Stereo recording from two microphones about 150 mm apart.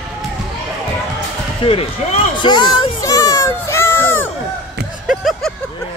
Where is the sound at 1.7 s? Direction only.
35° left (ahead or behind); by 4.3 s 15° left (ahead or behind).